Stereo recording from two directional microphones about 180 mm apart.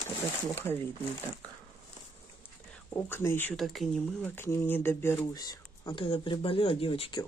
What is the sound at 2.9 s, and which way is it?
Speech, 15° left (ahead or behind).